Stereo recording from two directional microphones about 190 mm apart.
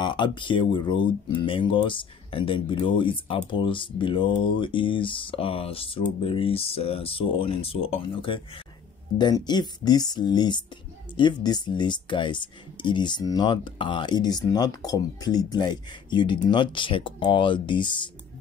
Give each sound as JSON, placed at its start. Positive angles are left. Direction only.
{"t": 0.0, "sound": "speech", "side_deg": 25}